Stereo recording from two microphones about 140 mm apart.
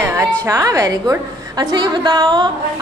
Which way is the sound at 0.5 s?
25° right (ahead or behind).